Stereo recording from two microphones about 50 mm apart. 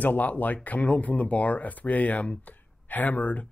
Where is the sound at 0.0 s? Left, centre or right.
Left.